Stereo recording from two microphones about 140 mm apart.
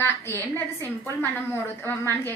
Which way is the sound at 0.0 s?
15° left (ahead or behind).